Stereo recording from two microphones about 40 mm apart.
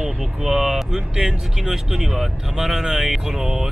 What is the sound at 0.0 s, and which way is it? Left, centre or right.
Vehicle, centre.